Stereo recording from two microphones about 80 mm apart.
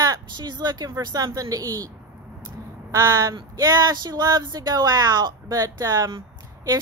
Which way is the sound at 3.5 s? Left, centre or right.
Right.